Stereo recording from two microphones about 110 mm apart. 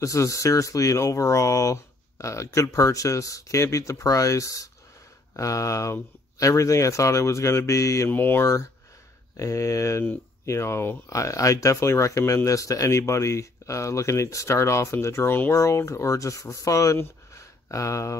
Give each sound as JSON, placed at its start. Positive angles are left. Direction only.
{"t": 0.0, "sound": "speech", "side_deg": 30}
{"t": 9.4, "sound": "speech", "side_deg": 30}